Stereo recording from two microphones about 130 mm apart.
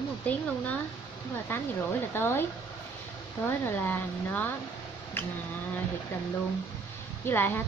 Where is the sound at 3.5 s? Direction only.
15° left (ahead or behind).